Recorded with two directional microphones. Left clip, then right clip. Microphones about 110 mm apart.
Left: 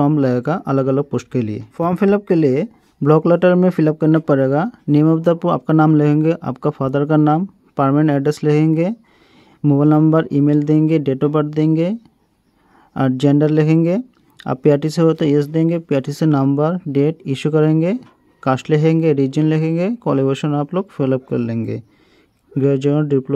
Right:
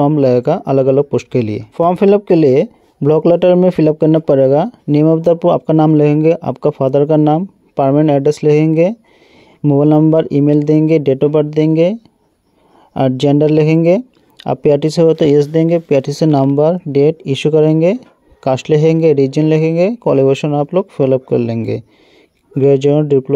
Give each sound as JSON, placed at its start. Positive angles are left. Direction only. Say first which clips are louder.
{"t": 0.0, "sound": "speech", "louder": "right 6 dB", "side_deg": -20}